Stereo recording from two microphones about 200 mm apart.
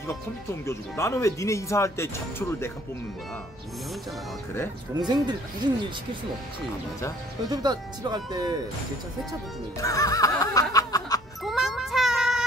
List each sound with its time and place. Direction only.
0.1 s speech: 15° left (ahead or behind)
4.9 s speech: 20° right (ahead or behind)
7.4 s speech: 20° right (ahead or behind)
9.8 s music: 15° left (ahead or behind)
11.4 s a sound: centre (ahead or behind)